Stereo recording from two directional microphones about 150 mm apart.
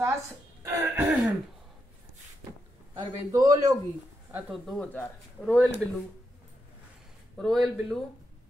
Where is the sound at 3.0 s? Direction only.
25° right (ahead or behind).